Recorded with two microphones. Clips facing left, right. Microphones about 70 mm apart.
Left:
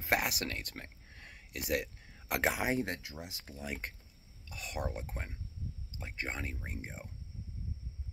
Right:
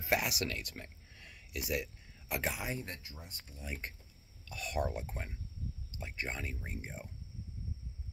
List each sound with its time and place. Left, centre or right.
0.0 s speech: left
2.2 s speech: left
4.5 s speech: left
5.9 s speech: left